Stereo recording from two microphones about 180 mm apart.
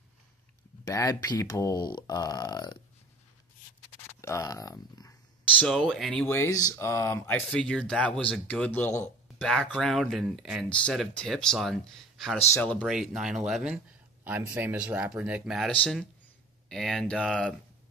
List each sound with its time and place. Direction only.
0.8 s speech: 20° left (ahead or behind)
4.2 s speech: 15° left (ahead or behind)
5.6 s speech: 5° left (ahead or behind)
6.3 s speech: 15° left (ahead or behind)
7.4 s speech: 5° left (ahead or behind)
12.9 s speech: 5° right (ahead or behind)